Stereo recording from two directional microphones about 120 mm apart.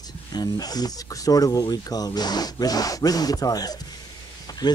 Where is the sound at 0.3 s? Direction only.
35° left (ahead or behind).